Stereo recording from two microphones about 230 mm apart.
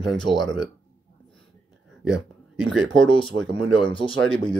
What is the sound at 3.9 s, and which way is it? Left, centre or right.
Speech, left.